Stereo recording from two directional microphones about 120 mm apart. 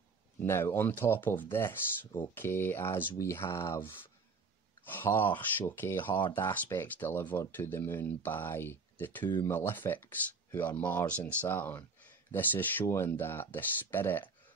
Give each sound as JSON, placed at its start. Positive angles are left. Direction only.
{"t": 0.4, "sound": "speech", "side_deg": 20}